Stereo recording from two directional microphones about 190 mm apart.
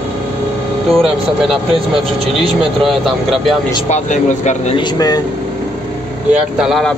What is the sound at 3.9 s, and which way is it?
Speech, 40° left (ahead or behind).